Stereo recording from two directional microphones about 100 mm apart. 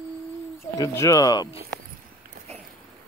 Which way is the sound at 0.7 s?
35° left (ahead or behind).